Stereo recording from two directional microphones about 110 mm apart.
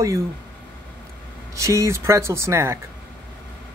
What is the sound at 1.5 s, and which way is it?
Speech, 25° right (ahead or behind).